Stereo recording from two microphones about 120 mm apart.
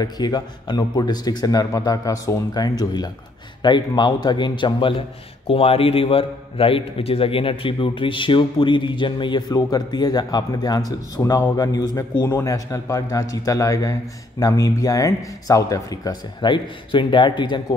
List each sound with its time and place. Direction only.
0.0 s a man's voice: 35° left (ahead or behind)